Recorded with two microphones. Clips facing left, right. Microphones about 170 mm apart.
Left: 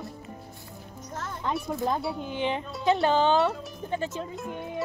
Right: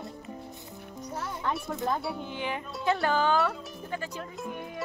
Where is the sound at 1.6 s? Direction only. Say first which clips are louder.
Left 2 dB; 20° left (ahead or behind).